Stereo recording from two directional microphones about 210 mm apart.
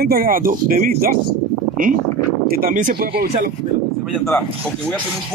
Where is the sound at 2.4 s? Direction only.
45° right (ahead or behind).